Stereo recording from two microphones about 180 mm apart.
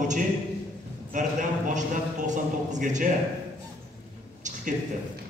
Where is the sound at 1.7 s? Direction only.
45° right (ahead or behind).